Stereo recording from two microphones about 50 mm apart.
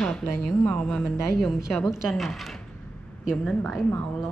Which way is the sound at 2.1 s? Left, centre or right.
Centre.